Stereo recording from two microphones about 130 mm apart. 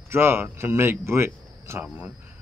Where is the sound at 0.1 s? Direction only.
20° right (ahead or behind).